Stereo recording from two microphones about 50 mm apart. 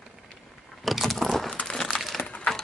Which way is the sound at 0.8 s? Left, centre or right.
Centre.